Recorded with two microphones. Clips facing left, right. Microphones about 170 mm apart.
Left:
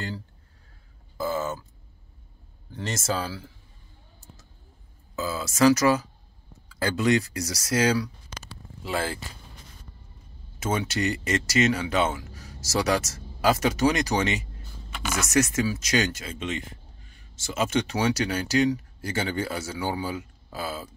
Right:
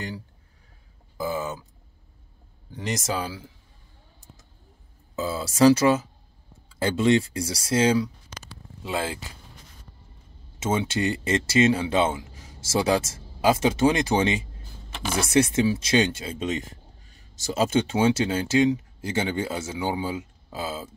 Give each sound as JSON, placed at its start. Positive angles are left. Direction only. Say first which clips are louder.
{"t": 1.1, "sound": "speech", "louder": "left 1 dB", "side_deg": -15}
{"t": 2.7, "sound": "speech", "louder": "right 1 dB", "side_deg": -15}
{"t": 5.1, "sound": "speech", "louder": "right 2 dB", "side_deg": -30}
{"t": 10.6, "sound": "speech", "louder": "right 2 dB", "side_deg": -20}